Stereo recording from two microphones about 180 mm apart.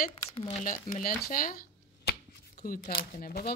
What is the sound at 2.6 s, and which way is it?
Speech, 50° left (ahead or behind).